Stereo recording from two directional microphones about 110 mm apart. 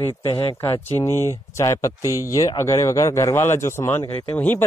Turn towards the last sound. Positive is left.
turn(degrees=15)  # may be behind; listen again after turning